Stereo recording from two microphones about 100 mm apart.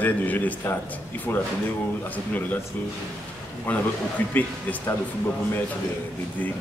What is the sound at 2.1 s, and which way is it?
Speech, 15° left (ahead or behind).